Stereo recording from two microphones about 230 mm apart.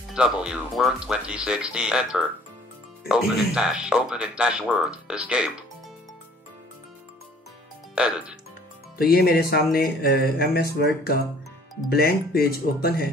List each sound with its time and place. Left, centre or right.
0.1 s speech: centre
7.9 s speech: centre
8.9 s speech: left